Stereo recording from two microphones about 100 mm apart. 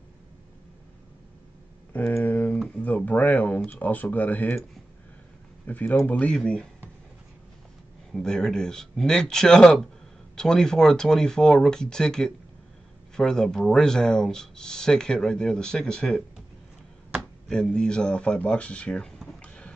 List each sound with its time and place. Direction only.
1.9 s a sound: 20° left (ahead or behind)
3.1 s speech: 15° left (ahead or behind)
5.7 s speech: 15° left (ahead or behind)
8.1 s speech: 5° left (ahead or behind)